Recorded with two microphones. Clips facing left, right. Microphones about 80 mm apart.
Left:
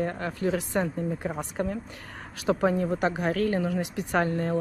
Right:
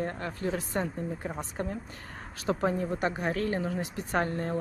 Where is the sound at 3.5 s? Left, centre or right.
Left.